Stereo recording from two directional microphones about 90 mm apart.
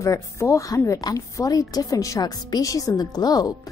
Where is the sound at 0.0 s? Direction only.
35° left (ahead or behind).